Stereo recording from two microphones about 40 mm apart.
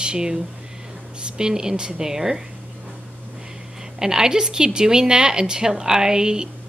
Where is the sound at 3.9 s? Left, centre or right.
Centre.